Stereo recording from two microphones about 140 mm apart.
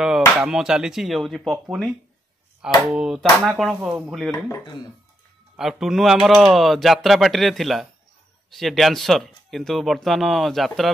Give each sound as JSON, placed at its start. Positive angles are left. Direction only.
{"t": 0.4, "sound": "speech", "side_deg": -5}
{"t": 2.9, "sound": "speech", "side_deg": -5}
{"t": 4.5, "sound": "speech", "side_deg": 25}
{"t": 5.6, "sound": "speech", "side_deg": 0}